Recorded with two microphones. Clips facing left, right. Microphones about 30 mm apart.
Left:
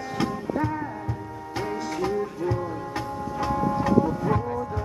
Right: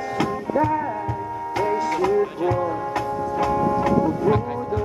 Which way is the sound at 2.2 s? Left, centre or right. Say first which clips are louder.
Right 6 dB; right.